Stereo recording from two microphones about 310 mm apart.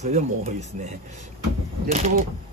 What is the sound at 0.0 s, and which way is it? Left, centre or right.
Speech, right.